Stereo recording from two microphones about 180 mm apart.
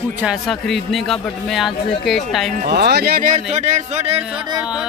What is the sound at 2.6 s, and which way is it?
Speech, 65° right (ahead or behind).